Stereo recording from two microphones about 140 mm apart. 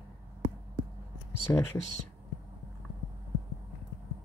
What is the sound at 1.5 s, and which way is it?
Speech, 15° left (ahead or behind).